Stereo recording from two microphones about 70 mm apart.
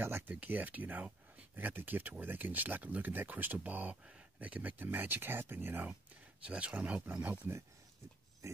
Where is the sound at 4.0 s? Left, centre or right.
Centre; by 5.8 s right.